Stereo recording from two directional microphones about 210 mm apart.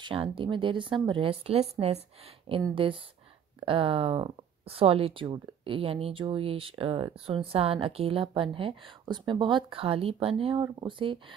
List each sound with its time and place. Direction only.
0.0 s speech: 25° right (ahead or behind)